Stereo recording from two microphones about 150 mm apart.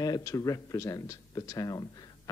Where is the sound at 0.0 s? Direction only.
25° left (ahead or behind).